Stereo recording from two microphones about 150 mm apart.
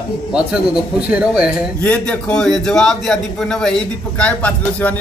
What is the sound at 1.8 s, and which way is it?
A man's voice, 10° left (ahead or behind).